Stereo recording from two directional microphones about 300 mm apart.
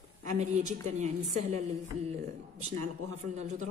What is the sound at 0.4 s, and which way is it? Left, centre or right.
A woman's voice, right.